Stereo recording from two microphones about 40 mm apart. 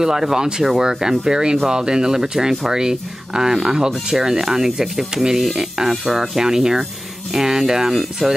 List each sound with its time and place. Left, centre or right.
0.0 s speech: centre
5.4 s speech: centre
8.2 s speech: centre